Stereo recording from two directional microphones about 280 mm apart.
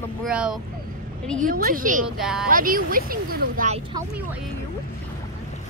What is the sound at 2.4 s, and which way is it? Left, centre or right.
Speech, right.